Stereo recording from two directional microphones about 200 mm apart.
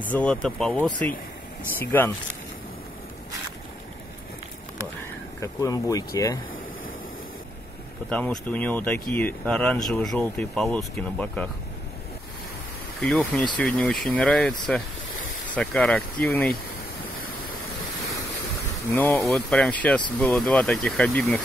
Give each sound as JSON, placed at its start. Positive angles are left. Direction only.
{"t": 0.0, "sound": "speech", "side_deg": 5}
{"t": 5.4, "sound": "speech", "side_deg": 15}
{"t": 8.1, "sound": "speech", "side_deg": 5}
{"t": 13.0, "sound": "speech", "side_deg": 5}
{"t": 18.9, "sound": "speech", "side_deg": 10}